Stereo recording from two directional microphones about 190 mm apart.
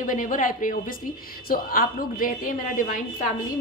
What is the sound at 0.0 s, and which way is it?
A woman's voice, 45° left (ahead or behind).